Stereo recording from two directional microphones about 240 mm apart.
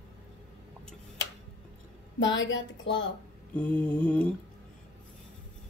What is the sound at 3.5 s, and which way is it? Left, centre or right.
Speech, centre.